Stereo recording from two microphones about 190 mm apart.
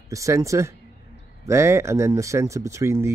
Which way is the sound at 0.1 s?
15° right (ahead or behind).